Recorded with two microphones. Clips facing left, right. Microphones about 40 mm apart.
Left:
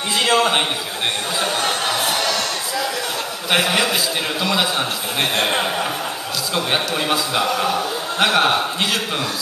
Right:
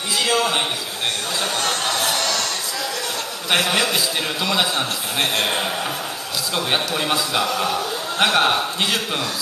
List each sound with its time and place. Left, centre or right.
0.1 s a man's voice: left
1.4 s music: centre
3.4 s a man's voice: centre